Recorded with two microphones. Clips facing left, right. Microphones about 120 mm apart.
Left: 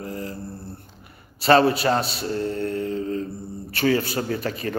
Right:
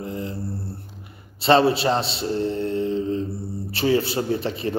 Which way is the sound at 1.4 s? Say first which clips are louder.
Even; 25° right (ahead or behind).